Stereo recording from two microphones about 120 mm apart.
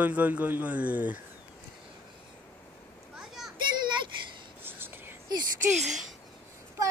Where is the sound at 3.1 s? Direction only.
5° right (ahead or behind).